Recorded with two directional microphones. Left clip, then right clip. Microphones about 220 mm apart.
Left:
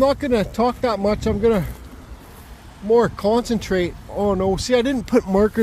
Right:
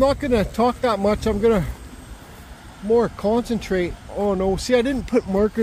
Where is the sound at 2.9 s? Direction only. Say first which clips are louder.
Left 2 dB; 20° left (ahead or behind).